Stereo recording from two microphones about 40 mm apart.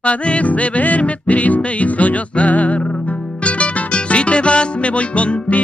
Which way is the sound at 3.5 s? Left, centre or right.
Left.